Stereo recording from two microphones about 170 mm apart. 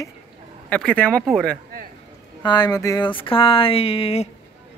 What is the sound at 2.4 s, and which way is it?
Speech, 25° left (ahead or behind).